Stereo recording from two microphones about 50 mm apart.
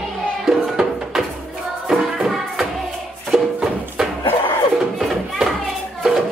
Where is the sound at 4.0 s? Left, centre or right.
Centre.